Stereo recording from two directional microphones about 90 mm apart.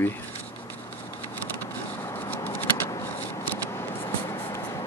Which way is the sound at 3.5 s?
30° left (ahead or behind).